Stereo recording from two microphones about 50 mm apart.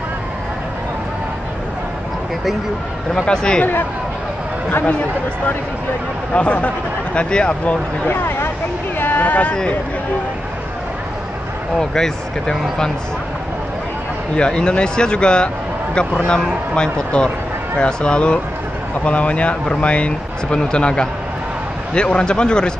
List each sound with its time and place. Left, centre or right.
3.3 s speech: centre
6.3 s speech: left
7.2 s speech: centre
8.1 s speech: left
9.0 s a sound: left
11.8 s speech: centre
14.3 s speech: centre